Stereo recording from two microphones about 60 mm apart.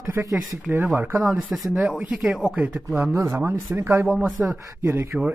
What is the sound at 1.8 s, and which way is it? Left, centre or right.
Speech, right.